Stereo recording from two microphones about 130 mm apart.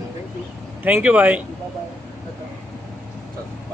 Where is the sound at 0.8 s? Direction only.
10° right (ahead or behind).